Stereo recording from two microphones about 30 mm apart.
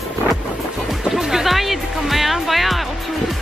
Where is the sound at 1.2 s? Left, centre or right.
Centre.